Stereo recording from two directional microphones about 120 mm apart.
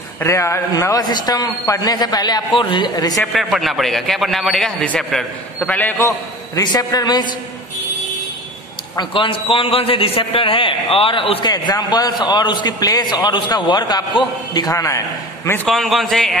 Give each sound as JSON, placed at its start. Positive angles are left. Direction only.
{"t": 0.2, "sound": "a man's voice", "side_deg": 25}
{"t": 2.5, "sound": "a man's voice", "side_deg": 45}
{"t": 3.2, "sound": "a man's voice", "side_deg": 0}
{"t": 6.6, "sound": "a man's voice", "side_deg": 35}
{"t": 9.1, "sound": "a man's voice", "side_deg": 45}
{"t": 11.5, "sound": "a man's voice", "side_deg": 35}
{"t": 15.7, "sound": "a man's voice", "side_deg": 0}